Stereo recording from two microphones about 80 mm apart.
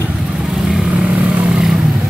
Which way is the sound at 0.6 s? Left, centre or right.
Centre.